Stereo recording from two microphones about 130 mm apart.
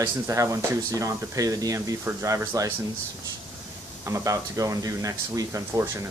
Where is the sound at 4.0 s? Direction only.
25° right (ahead or behind).